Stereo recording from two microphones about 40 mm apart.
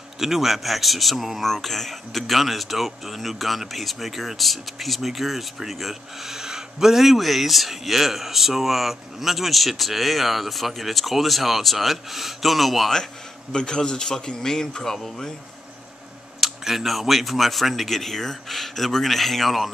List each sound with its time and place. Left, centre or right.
0.2 s speech: centre
1.4 s speech: centre
13.5 s a man's voice: centre
16.3 s speech: centre